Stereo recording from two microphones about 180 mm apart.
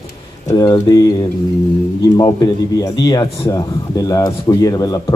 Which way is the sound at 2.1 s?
20° left (ahead or behind).